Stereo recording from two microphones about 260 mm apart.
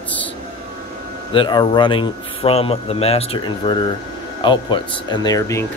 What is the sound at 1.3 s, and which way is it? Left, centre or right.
Speech, centre.